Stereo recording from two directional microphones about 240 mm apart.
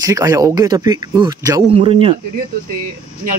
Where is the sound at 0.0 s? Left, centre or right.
Centre.